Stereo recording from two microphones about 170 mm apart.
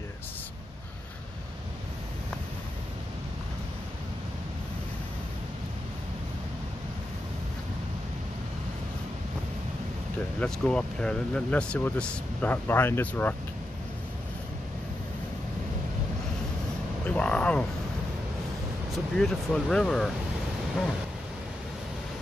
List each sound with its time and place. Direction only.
10.4 s speech: 5° left (ahead or behind)
17.0 s vehicle: 10° left (ahead or behind)
19.1 s speech: 5° left (ahead or behind)